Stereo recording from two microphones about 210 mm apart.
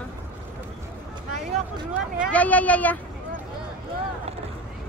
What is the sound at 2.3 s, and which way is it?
Speech, 5° left (ahead or behind).